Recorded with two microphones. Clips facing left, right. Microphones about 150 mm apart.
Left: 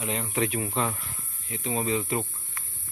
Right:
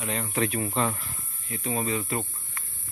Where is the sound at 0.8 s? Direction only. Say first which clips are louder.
Right 2 dB; centre (ahead or behind).